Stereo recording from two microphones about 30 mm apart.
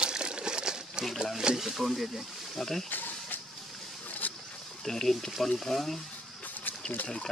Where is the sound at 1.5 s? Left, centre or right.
Right.